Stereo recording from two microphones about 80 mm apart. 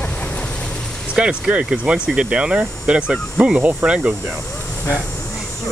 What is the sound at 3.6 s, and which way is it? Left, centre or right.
Speech, right.